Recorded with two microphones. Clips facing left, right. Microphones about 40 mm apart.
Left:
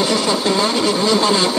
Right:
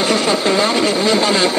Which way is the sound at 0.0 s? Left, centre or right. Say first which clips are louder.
Right 2 dB; right.